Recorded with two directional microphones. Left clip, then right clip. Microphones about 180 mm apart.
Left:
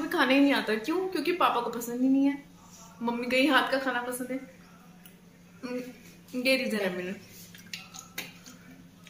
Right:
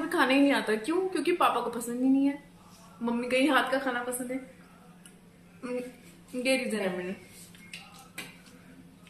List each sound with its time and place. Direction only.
0.1 s a woman's voice: centre (ahead or behind)
5.6 s a woman's voice: centre (ahead or behind)